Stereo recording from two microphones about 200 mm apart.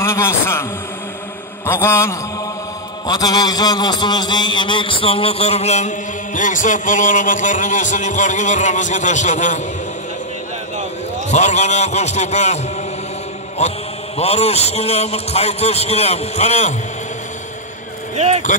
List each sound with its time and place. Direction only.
0.0 s a man's voice: 15° left (ahead or behind)
1.7 s a man's voice: 15° left (ahead or behind); by 9.6 s 35° left (ahead or behind)
11.2 s a man's voice: 35° left (ahead or behind)
13.6 s a man's voice: 30° left (ahead or behind)
18.1 s speech: 35° right (ahead or behind)